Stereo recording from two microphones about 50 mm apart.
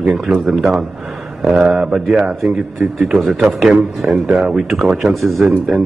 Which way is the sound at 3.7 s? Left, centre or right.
Centre.